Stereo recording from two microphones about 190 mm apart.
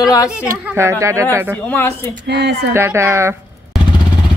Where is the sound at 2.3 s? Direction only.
65° right (ahead or behind).